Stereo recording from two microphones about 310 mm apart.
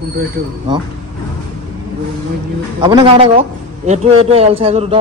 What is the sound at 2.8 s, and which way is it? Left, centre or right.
A man's voice, centre.